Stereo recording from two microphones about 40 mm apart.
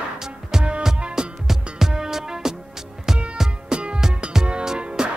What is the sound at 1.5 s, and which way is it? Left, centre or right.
Music, centre.